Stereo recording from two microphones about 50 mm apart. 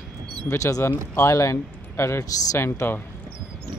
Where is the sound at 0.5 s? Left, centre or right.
Left.